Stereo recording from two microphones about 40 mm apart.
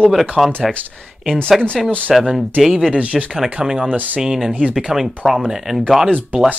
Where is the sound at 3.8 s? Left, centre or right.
Right.